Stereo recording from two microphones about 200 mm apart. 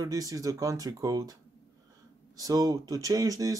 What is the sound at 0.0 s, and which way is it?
Speech, 15° right (ahead or behind).